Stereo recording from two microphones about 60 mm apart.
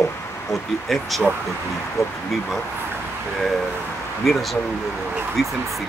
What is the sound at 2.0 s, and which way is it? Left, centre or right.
Speech, left.